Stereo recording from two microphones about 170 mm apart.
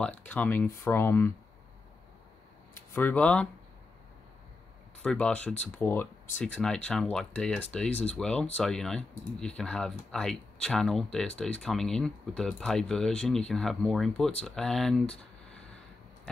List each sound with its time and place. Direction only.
0.3 s speech: 10° left (ahead or behind)
2.9 s speech: 10° left (ahead or behind)
5.0 s speech: 5° left (ahead or behind)